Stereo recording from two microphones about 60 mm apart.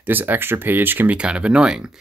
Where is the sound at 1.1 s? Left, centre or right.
Centre.